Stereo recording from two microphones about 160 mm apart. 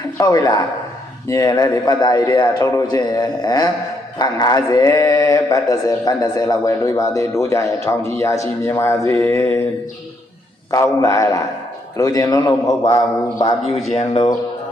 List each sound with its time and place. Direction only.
0.2 s speech: 25° left (ahead or behind)
10.7 s speech: 20° left (ahead or behind)